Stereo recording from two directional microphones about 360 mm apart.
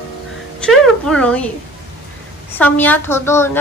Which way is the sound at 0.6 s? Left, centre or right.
Centre.